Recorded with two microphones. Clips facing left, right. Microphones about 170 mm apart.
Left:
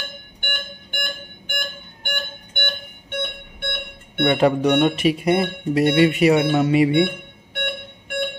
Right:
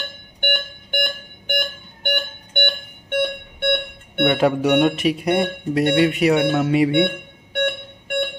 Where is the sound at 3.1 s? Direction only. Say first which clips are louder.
Right 7 dB; 60° right (ahead or behind).